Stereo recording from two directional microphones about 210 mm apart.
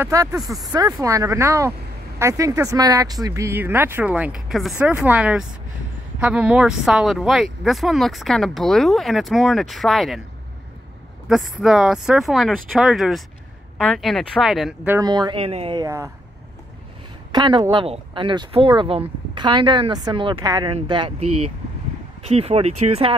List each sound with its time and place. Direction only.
0.0 s speech: 15° right (ahead or behind)
11.2 s speech: centre (ahead or behind)
15.0 s speech: 20° right (ahead or behind)
17.3 s speech: 20° right (ahead or behind)